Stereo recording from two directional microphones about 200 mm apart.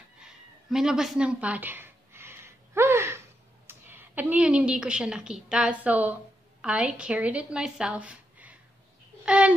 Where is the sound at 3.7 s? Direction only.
10° right (ahead or behind).